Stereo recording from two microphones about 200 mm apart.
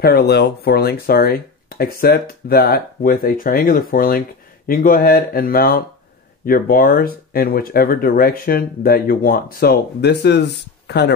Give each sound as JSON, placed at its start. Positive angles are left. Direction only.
{"t": 0.0, "sound": "speech", "side_deg": 55}